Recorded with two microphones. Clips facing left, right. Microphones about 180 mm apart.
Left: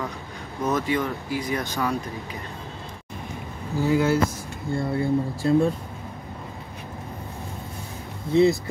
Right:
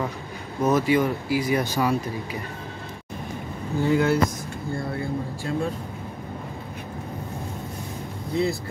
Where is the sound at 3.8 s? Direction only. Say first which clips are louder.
Even; 5° left (ahead or behind).